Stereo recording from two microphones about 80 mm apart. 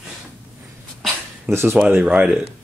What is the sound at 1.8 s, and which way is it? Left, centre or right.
Speech, centre.